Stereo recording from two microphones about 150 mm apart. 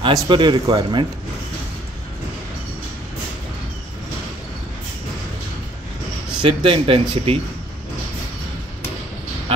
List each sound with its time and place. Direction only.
0.0 s speech: 30° right (ahead or behind)
6.4 s speech: 35° right (ahead or behind)